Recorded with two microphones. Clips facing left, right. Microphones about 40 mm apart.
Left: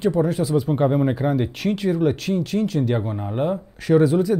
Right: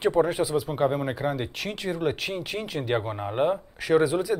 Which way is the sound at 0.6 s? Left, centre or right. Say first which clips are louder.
Left 8 dB; centre.